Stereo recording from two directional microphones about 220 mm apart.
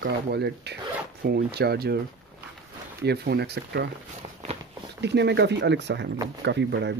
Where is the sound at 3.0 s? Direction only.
50° right (ahead or behind).